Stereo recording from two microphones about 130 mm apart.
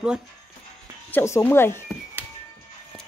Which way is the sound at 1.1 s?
20° left (ahead or behind).